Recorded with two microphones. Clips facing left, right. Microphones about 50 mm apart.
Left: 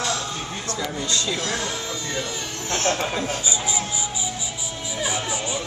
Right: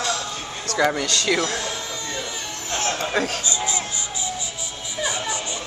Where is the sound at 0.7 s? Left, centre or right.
Right.